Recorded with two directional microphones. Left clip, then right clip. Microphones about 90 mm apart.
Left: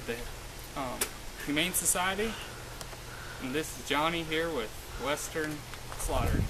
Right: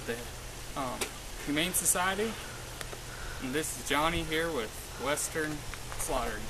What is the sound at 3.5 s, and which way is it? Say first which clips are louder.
Speech: even; 15° right (ahead or behind).